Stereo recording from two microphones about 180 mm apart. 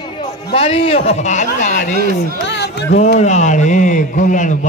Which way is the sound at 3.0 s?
40° left (ahead or behind).